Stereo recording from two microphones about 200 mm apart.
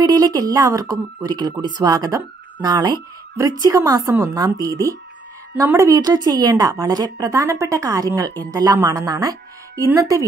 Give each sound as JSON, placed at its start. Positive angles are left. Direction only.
{"t": 0.0, "sound": "speech", "side_deg": -20}